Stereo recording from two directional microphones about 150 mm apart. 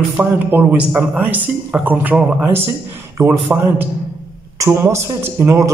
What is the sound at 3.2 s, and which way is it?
Speech, 20° right (ahead or behind).